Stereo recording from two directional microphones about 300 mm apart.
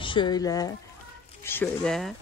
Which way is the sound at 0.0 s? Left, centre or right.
Centre.